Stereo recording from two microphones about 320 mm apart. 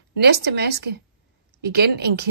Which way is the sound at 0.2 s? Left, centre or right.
Right.